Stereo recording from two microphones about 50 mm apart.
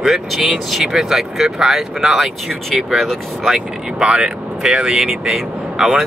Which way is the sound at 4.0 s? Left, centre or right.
Centre.